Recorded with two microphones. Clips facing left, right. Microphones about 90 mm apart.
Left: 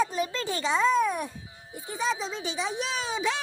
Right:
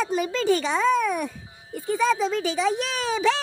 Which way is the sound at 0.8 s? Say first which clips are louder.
Right 2 dB; 70° right (ahead or behind).